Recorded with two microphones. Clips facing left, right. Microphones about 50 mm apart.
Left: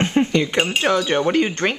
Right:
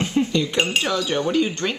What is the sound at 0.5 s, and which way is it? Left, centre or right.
Wind chime, left.